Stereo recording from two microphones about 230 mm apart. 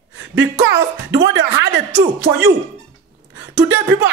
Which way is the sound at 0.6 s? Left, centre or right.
Right.